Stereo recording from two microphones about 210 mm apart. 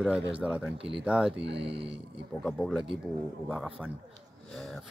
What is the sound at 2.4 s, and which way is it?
A man's voice, centre (ahead or behind).